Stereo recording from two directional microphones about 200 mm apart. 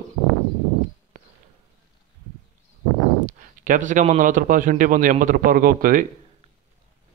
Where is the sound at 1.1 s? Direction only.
40° right (ahead or behind).